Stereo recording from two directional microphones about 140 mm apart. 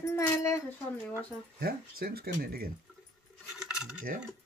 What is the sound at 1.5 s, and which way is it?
Speech, 90° right.